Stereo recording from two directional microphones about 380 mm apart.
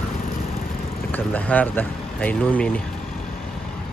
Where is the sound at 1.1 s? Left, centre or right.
Centre.